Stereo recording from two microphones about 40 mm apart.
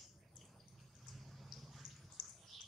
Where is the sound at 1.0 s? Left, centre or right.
Centre.